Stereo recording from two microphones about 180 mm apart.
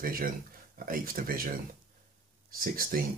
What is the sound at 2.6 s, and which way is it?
Speech, 50° right (ahead or behind).